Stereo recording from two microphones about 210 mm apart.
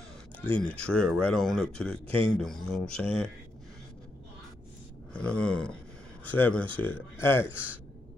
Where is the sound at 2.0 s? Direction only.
25° right (ahead or behind).